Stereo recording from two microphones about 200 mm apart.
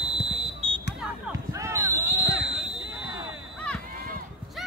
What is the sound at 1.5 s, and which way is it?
Basketball bounce, 15° right (ahead or behind).